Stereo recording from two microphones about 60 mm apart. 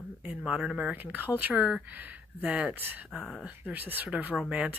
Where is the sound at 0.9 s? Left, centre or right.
Right.